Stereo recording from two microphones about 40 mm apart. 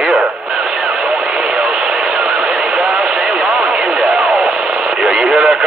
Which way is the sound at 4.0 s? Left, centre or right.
Centre.